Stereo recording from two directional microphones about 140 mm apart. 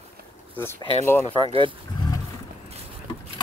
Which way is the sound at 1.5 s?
40° right (ahead or behind).